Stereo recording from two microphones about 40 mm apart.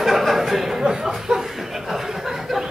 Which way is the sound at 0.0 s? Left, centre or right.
Centre.